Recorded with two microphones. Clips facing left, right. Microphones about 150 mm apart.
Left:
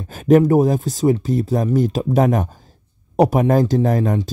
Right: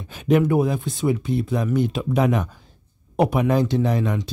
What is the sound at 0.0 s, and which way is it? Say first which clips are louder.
Speech: left 6 dB; 40° left (ahead or behind).